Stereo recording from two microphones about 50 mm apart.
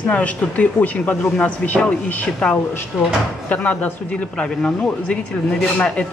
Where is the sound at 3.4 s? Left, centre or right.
Left.